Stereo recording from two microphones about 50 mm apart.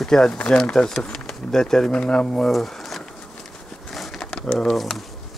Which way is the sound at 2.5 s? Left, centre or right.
Centre.